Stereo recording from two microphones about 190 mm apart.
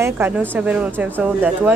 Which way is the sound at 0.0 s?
10° right (ahead or behind).